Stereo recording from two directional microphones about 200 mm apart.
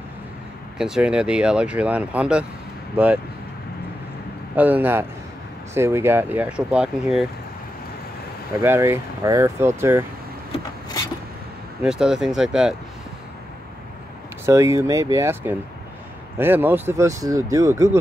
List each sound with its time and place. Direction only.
0.7 s speech: 5° right (ahead or behind)
4.6 s speech: 10° right (ahead or behind)
8.5 s speech: 15° right (ahead or behind)
11.8 s speech: 5° right (ahead or behind)
14.4 s speech: 15° right (ahead or behind)